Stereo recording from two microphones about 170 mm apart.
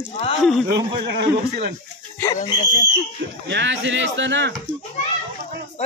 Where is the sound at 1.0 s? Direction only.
65° right (ahead or behind).